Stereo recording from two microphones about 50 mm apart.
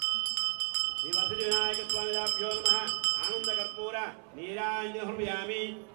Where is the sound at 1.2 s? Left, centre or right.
Right.